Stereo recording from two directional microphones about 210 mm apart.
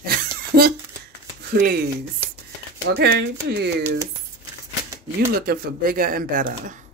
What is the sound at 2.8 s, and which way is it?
Speech, 55° right (ahead or behind).